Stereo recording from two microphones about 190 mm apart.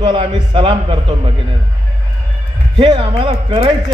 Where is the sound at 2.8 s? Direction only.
30° right (ahead or behind).